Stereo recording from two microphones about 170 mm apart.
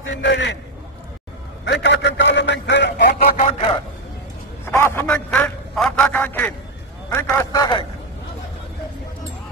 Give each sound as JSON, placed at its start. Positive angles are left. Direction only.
{"t": 0.1, "sound": "a man's voice", "side_deg": 90}
{"t": 1.6, "sound": "a man's voice", "side_deg": 90}
{"t": 3.3, "sound": "a man's voice", "side_deg": 40}
{"t": 4.6, "sound": "a man's voice", "side_deg": 15}
{"t": 7.5, "sound": "speech", "side_deg": 25}